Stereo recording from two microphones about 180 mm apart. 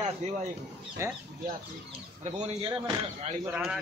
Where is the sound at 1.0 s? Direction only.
15° right (ahead or behind).